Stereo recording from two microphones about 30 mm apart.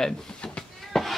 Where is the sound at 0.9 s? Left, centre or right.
Centre.